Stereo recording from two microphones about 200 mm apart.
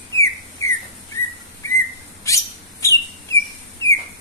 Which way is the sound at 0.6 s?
15° left (ahead or behind).